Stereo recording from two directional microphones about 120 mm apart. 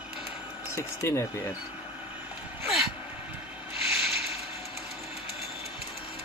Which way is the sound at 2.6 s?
Centre (ahead or behind).